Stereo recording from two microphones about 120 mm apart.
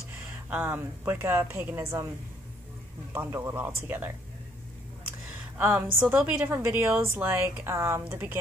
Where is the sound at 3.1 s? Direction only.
20° right (ahead or behind).